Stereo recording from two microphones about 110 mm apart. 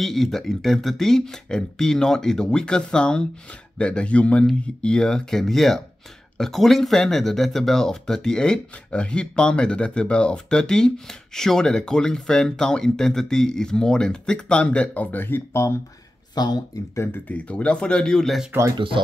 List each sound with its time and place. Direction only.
0.0 s speech: 5° left (ahead or behind); by 15.7 s 20° left (ahead or behind)
16.3 s speech: 40° left (ahead or behind)
16.9 s speech: 20° left (ahead or behind); by 18.5 s centre (ahead or behind)